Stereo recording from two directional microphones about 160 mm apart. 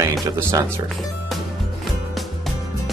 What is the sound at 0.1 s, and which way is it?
Speech, 20° right (ahead or behind).